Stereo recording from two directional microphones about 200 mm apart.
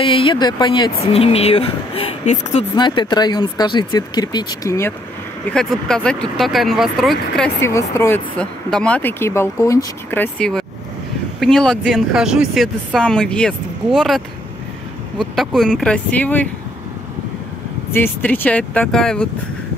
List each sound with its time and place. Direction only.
0.0 s speech: 25° left (ahead or behind)
5.5 s speech: 5° left (ahead or behind)
17.9 s speech: 10° left (ahead or behind)